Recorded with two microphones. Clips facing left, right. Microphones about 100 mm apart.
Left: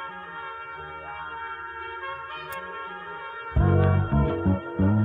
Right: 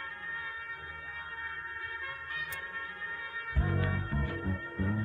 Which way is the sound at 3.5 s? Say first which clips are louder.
Left 11 dB; 55° left (ahead or behind).